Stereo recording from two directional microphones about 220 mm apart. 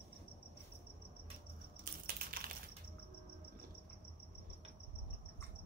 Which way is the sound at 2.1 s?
45° right (ahead or behind).